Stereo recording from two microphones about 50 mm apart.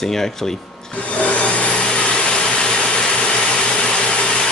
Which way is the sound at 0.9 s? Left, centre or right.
Left.